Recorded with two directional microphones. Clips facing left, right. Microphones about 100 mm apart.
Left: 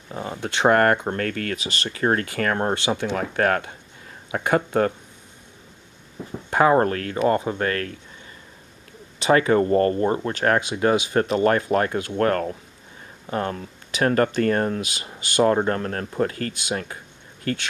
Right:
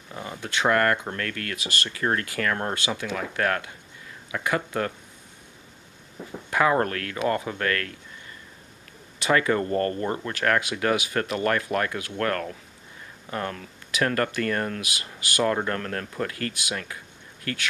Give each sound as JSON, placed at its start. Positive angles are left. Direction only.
{"t": 0.1, "sound": "speech", "side_deg": 25}
{"t": 3.2, "sound": "speech", "side_deg": 35}
{"t": 6.5, "sound": "speech", "side_deg": 30}
{"t": 9.2, "sound": "speech", "side_deg": 25}